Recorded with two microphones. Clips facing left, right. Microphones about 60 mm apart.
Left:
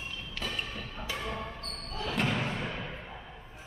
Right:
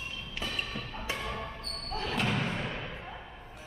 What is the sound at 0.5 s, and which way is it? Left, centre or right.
Music, centre.